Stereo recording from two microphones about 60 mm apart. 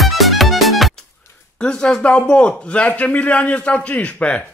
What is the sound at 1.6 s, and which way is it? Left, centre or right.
A man's voice, centre.